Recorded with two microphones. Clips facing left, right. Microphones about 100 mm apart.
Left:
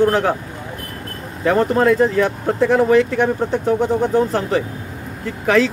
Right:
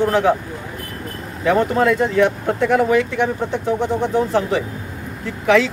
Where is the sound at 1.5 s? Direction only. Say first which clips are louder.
Left 1 dB; 35° left (ahead or behind).